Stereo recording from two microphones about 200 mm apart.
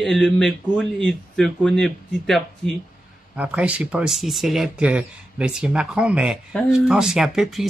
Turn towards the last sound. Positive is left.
turn(degrees=0)  # may be behind; listen again after turning